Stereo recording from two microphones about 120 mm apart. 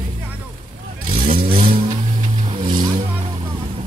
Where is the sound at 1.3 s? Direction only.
55° right (ahead or behind).